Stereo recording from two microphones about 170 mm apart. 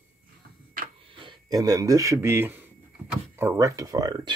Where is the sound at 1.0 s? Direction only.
30° right (ahead or behind).